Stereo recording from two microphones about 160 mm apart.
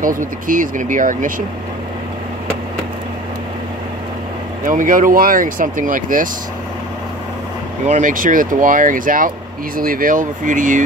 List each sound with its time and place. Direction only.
0.0 s speech: 55° right (ahead or behind)
4.6 s speech: 55° right (ahead or behind)
7.8 s speech: 50° right (ahead or behind)